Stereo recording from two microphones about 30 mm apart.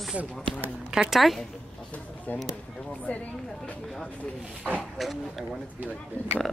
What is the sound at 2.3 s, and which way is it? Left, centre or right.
Speech, left.